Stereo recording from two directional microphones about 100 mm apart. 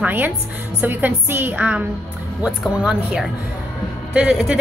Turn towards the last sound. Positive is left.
turn(degrees=-10)  # may be behind; listen again after turning